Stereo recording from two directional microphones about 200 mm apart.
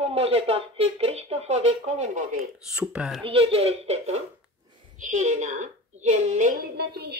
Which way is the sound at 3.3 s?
30° right (ahead or behind).